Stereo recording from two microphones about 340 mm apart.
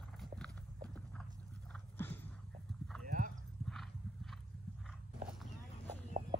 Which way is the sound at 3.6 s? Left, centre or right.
Centre.